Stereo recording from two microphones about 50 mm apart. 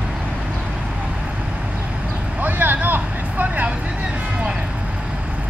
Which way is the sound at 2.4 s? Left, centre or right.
Right.